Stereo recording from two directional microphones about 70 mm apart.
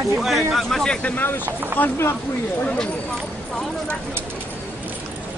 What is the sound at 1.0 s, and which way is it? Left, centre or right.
Speech, left.